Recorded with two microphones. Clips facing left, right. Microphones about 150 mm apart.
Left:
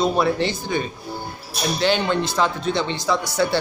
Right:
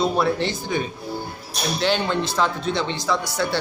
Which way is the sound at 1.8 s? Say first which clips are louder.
Left 2 dB; centre (ahead or behind).